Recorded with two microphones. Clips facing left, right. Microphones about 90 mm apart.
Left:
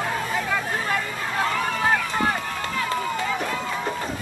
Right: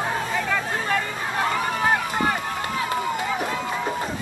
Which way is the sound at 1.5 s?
30° right (ahead or behind).